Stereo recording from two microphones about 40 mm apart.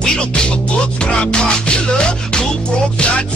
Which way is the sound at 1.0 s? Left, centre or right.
Left.